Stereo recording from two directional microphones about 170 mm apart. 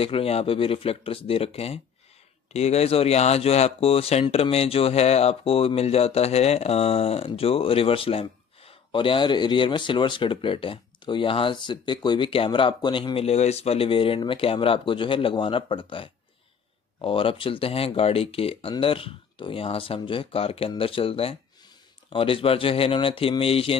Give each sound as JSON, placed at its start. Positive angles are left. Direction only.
{"t": 0.0, "sound": "speech", "side_deg": 35}